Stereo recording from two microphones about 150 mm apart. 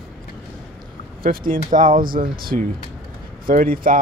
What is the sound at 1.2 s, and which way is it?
Speech, 70° right (ahead or behind).